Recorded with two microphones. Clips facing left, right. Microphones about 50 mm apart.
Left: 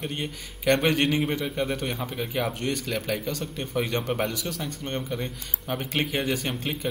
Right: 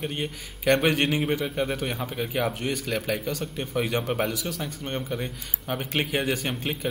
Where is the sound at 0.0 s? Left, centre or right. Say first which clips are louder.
Right 1 dB; centre.